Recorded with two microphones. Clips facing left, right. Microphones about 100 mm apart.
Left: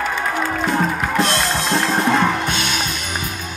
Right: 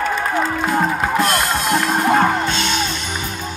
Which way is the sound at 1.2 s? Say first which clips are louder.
Right 2 dB; 30° left (ahead or behind).